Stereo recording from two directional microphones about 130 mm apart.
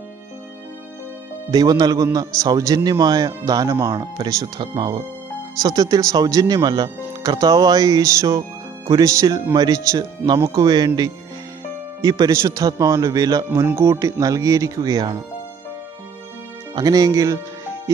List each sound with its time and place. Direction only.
1.5 s speech: 30° right (ahead or behind)
12.0 s speech: 30° right (ahead or behind)
16.7 s speech: 30° right (ahead or behind)